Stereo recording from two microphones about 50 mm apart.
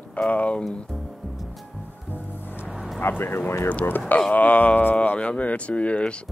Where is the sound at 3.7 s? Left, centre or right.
Left.